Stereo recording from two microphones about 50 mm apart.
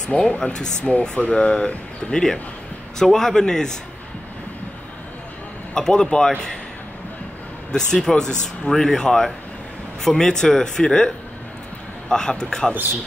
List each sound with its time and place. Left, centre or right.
0.4 s speech: centre
5.8 s speech: centre
7.7 s speech: centre